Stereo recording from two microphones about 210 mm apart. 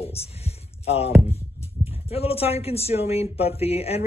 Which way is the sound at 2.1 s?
30° left (ahead or behind).